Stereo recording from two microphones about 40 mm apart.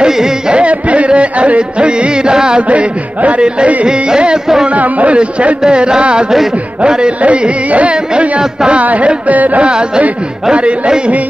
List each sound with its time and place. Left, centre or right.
0.0 s carnatic music: centre
0.6 s music: right
2.7 s speech: right
3.8 s music: right
4.6 s speech: right
5.6 s music: right
7.2 s speech: right
9.6 s music: right